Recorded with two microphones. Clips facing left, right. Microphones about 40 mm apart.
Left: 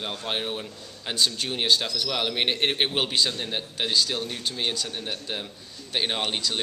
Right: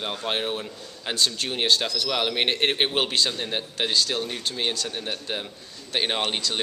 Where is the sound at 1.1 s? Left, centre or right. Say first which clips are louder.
Even; centre.